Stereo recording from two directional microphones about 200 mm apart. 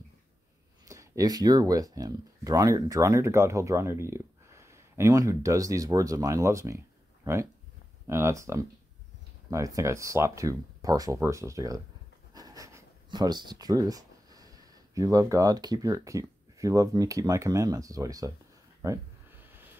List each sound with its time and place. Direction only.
0.8 s speech: 15° right (ahead or behind)
8.1 s speech: 15° right (ahead or behind)
18.8 s a sound: 15° right (ahead or behind)